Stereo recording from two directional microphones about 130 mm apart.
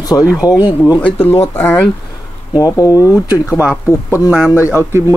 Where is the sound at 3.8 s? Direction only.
20° left (ahead or behind).